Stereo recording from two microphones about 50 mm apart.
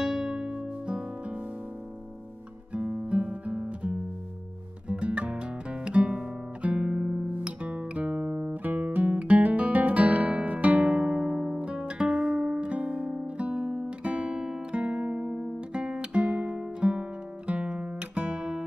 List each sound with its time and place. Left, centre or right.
0.0 s music: centre
2.7 s guitar: right
7.3 s music: right
13.8 s guitar: right
16.8 s music: centre
17.5 s guitar: right